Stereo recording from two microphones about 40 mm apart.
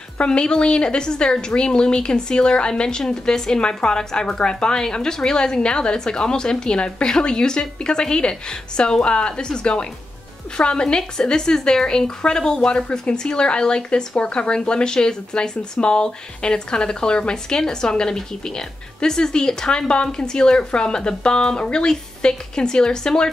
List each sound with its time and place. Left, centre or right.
0.2 s a woman's voice: left